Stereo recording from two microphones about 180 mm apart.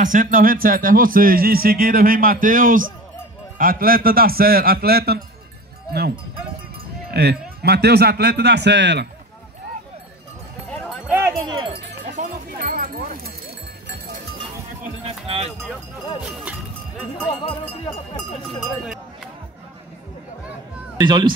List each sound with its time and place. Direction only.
0.0 s speech: 45° right (ahead or behind)
7.1 s speech: 65° right (ahead or behind)
10.7 s clip-clop: 5° left (ahead or behind)
11.1 s a sound: 10° right (ahead or behind)
11.4 s speech: 30° right (ahead or behind)
12.0 s sheep: 45° right (ahead or behind)
15.0 s music: 35° right (ahead or behind)
16.2 s music: 5° right (ahead or behind)
17.3 s speech: 30° left (ahead or behind)
21.0 s speech: 25° right (ahead or behind)